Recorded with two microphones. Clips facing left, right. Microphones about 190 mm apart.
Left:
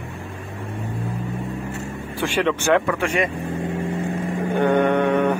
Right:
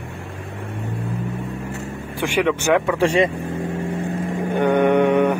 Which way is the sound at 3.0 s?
30° right (ahead or behind).